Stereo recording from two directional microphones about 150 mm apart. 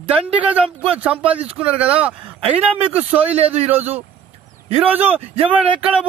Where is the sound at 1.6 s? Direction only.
10° right (ahead or behind).